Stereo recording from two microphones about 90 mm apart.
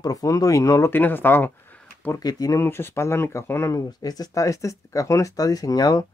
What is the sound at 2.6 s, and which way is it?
Speech, 25° left (ahead or behind).